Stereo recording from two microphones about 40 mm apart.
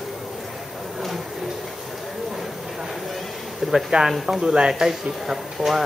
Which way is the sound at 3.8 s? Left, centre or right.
Centre.